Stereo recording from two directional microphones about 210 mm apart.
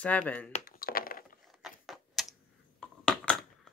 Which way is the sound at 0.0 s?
5° left (ahead or behind).